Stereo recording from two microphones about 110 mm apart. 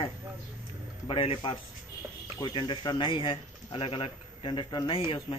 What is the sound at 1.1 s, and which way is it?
Speech, 55° left (ahead or behind).